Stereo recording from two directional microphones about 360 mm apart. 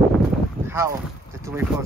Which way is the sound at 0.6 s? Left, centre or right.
Centre.